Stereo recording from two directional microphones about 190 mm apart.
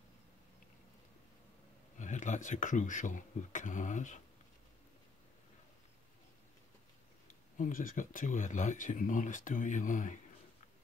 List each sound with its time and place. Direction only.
2.0 s speech: 40° left (ahead or behind)
7.5 s speech: 45° left (ahead or behind)